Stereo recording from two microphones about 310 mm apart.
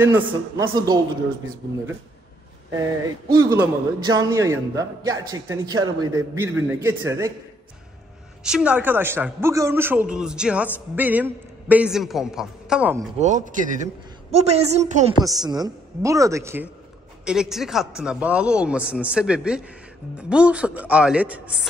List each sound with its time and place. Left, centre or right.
0.0 s a man's voice: centre
3.3 s a man's voice: centre
8.5 s a man's voice: centre
13.2 s a woman's voice: right; by 21.4 s centre